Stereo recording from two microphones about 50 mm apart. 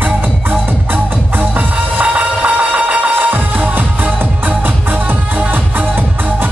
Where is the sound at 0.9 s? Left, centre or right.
Right.